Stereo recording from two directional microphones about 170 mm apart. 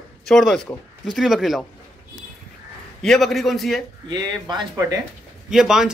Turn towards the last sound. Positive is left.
turn(degrees=-5)  # may be behind; listen again after turning